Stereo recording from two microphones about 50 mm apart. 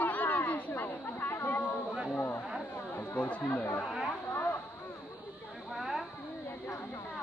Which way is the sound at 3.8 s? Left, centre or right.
Centre.